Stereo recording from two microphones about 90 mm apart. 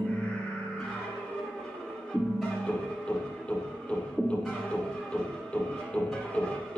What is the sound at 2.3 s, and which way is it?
Music, 10° left (ahead or behind).